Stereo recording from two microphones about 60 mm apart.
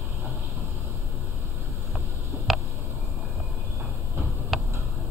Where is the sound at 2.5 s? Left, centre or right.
Centre.